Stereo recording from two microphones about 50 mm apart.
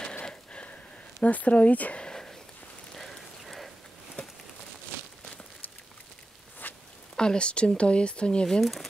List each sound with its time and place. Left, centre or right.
0.1 s a sound: left
1.2 s speech: left
2.0 s a sound: centre
6.6 s zipper: left
7.2 s speech: centre
8.5 s speech: centre